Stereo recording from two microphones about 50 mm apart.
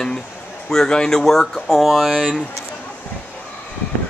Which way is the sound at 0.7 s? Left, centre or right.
Centre.